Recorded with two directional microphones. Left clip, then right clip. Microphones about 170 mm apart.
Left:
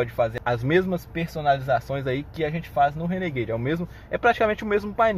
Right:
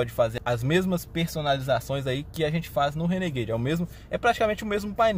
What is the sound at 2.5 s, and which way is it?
Speech, 30° right (ahead or behind).